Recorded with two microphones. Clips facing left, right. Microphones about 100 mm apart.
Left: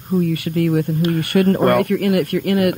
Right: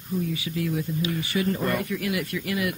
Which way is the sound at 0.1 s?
60° left (ahead or behind).